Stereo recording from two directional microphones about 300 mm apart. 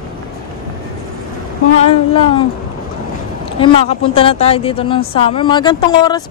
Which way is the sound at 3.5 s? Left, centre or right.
Centre.